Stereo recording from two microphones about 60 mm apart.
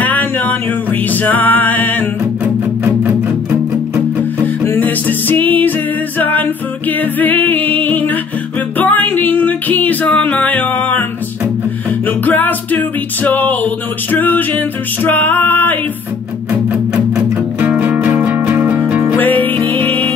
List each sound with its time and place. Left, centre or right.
0.0 s music: left
2.4 s music: right
4.7 s music: left
12.3 s music: left
16.7 s music: centre
17.6 s music: right
19.1 s music: left